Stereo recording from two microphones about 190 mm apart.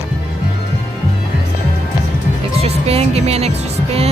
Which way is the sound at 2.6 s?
30° right (ahead or behind).